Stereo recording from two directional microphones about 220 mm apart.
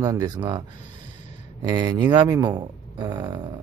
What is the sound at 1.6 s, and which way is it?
Speech, 20° right (ahead or behind).